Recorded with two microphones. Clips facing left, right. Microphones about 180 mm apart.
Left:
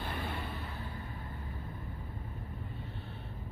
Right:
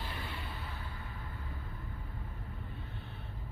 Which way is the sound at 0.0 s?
55° left (ahead or behind).